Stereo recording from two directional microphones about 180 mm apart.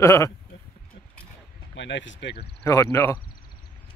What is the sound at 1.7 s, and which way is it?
Speech, 90° left.